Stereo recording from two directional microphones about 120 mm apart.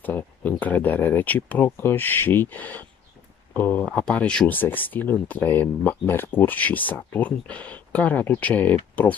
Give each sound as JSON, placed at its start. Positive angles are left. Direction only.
{"t": 0.0, "sound": "speech", "side_deg": 15}